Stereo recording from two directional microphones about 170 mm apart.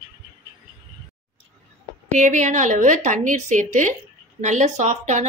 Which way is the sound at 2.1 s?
45° right (ahead or behind).